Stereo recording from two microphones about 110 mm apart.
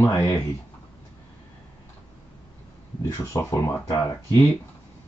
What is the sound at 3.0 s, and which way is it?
Speech, 30° left (ahead or behind).